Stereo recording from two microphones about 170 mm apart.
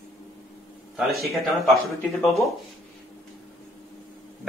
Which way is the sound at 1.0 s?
Centre (ahead or behind).